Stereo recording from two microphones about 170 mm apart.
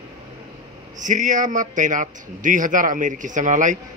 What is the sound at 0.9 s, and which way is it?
A man's voice, 50° right (ahead or behind).